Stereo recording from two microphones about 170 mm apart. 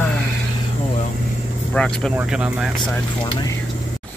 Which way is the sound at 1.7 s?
5° left (ahead or behind).